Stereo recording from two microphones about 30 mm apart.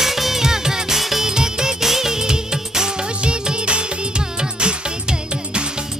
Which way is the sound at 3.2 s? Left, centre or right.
Right.